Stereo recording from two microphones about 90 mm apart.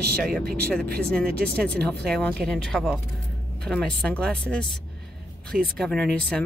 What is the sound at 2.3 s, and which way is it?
Speech, 5° left (ahead or behind).